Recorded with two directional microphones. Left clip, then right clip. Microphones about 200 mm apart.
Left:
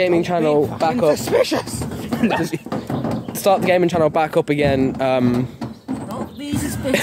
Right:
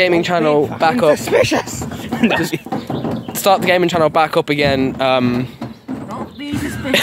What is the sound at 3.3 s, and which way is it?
Speech, 5° left (ahead or behind).